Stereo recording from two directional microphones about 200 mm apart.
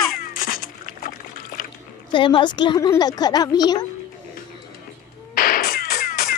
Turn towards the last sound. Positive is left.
turn(degrees=45)  # may be behind; listen again after turning